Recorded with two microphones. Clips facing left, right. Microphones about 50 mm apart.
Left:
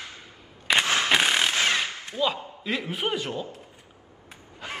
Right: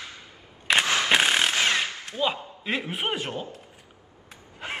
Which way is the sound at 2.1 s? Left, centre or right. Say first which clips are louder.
Left 1 dB; right.